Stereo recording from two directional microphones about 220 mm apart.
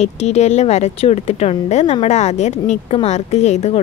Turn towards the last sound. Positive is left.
turn(degrees=30)  # may be behind; listen again after turning